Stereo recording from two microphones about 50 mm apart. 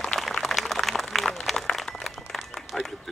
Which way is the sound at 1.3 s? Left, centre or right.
Centre.